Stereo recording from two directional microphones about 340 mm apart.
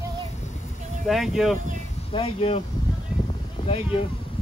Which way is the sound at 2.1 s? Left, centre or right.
Centre.